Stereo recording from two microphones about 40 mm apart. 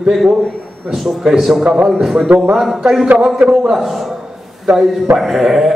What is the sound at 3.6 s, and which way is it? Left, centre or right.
A man's voice, centre.